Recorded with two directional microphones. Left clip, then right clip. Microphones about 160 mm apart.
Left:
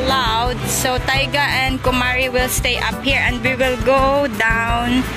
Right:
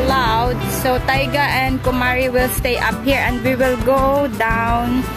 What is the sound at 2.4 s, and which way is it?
Music, 20° right (ahead or behind).